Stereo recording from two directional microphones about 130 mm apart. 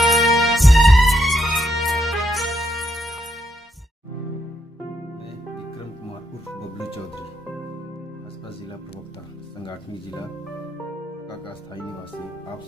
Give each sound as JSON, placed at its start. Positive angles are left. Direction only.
{"t": 0.0, "sound": "music", "side_deg": 0}
{"t": 9.6, "sound": "music", "side_deg": 35}